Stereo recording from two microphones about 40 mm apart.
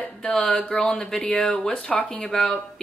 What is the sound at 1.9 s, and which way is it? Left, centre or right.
Speech, left.